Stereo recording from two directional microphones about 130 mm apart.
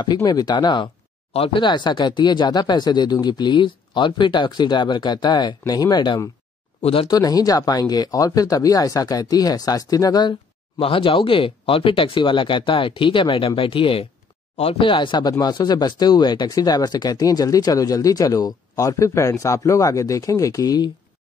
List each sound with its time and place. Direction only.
0.0 s speech: 30° left (ahead or behind)
6.8 s speech: 45° left (ahead or behind)
7.1 s speech: 30° left (ahead or behind)
10.8 s speech: 45° left (ahead or behind)